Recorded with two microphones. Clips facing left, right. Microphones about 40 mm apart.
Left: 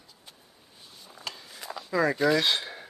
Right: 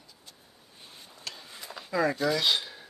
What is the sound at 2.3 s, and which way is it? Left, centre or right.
Speech, left.